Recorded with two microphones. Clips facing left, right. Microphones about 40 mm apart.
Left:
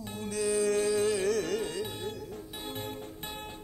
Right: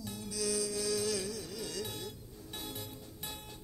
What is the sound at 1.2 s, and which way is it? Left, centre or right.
Music, left.